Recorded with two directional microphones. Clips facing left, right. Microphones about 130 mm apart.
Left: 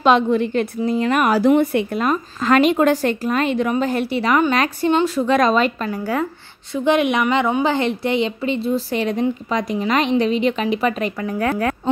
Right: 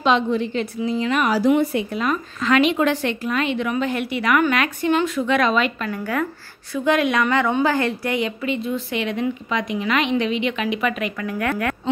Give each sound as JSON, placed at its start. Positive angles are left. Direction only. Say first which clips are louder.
{"t": 0.0, "sound": "a woman's voice", "louder": "left 4 dB", "side_deg": 50}
{"t": 2.0, "sound": "a woman's voice", "louder": "left 3 dB", "side_deg": 40}